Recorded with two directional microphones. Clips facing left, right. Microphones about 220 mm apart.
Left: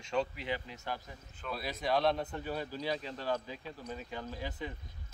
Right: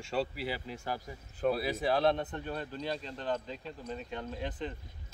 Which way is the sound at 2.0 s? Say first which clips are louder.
Right 2 dB; 5° left (ahead or behind).